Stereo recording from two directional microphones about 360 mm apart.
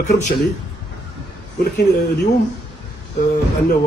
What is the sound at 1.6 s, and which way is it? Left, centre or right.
Speech, left.